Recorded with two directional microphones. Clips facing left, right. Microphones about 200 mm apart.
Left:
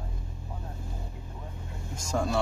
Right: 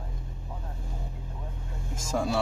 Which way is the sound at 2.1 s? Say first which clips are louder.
Right 1 dB; 5° right (ahead or behind).